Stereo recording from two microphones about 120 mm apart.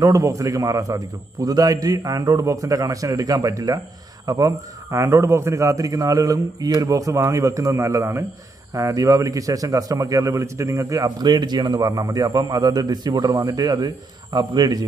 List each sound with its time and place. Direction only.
0.0 s a man's voice: 30° right (ahead or behind)